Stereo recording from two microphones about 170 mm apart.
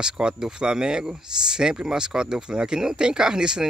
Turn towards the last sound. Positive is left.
turn(degrees=-5)  # may be behind; listen again after turning